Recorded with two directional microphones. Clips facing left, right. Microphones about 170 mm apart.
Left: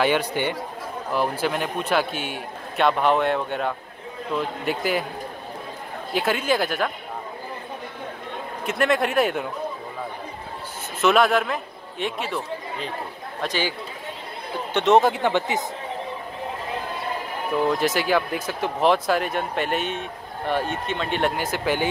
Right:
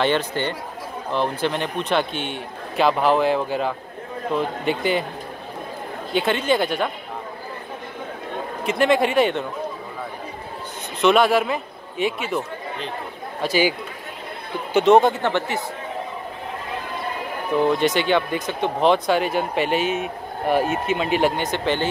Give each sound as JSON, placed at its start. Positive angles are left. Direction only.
{"t": 0.0, "sound": "a man's voice", "side_deg": 10}
{"t": 6.1, "sound": "speech", "side_deg": 5}
{"t": 8.6, "sound": "speech", "side_deg": 0}
{"t": 11.0, "sound": "speech", "side_deg": 0}
{"t": 15.1, "sound": "a man's voice", "side_deg": 15}
{"t": 17.6, "sound": "speech", "side_deg": 0}
{"t": 21.4, "sound": "speech", "side_deg": 5}